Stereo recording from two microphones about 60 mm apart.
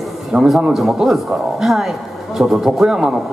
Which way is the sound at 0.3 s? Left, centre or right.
Centre.